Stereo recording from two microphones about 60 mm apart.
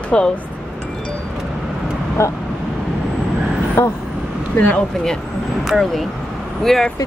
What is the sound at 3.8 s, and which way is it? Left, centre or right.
Speech, left.